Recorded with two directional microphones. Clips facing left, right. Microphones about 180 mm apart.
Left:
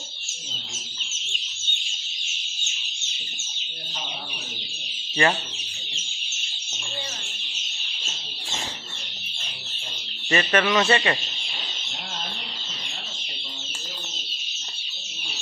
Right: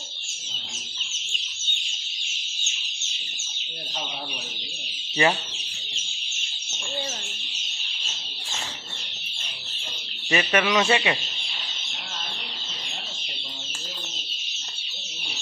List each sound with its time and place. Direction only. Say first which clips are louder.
5.2 s a man's voice: even; 20° right (ahead or behind)
10.3 s a man's voice: left 1 dB; 10° right (ahead or behind)